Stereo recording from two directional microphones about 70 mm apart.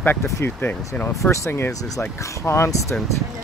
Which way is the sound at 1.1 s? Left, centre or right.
Left.